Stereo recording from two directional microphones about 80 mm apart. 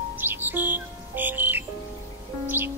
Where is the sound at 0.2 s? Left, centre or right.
Right.